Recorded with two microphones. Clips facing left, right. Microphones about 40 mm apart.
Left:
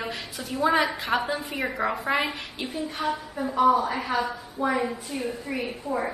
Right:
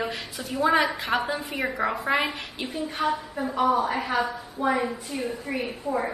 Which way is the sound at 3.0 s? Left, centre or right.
Right.